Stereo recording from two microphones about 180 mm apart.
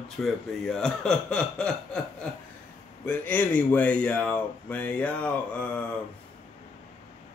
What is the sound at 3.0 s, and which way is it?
Speech, 10° left (ahead or behind).